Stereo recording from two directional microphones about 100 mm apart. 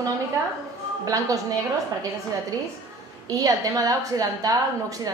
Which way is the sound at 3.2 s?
35° right (ahead or behind).